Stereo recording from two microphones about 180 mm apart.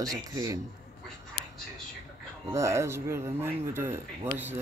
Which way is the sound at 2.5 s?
15° right (ahead or behind).